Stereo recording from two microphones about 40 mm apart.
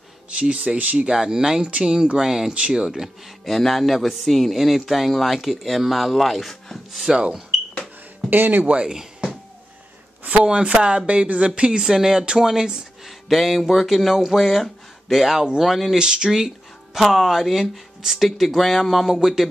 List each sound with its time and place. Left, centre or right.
0.3 s speech: right
1.0 s speech: centre
3.4 s speech: centre
7.1 s speech: right
8.3 s speech: right
10.4 s speech: right
11.8 s speech: centre
13.0 s speech: centre
16.0 s speech: right
16.3 s speech: centre